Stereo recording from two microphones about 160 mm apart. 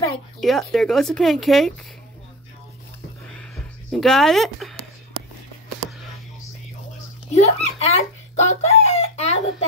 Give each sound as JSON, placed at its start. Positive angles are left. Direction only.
{"t": 0.4, "sound": "speech", "side_deg": 0}
{"t": 3.5, "sound": "speech", "side_deg": 0}
{"t": 7.3, "sound": "speech", "side_deg": 40}